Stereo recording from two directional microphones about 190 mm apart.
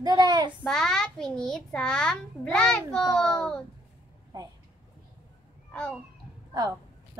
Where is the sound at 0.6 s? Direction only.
5° left (ahead or behind).